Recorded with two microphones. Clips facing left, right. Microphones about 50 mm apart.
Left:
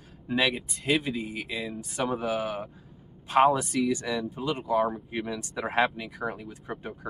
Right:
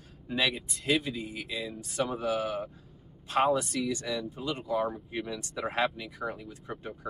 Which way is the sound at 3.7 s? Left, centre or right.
Centre.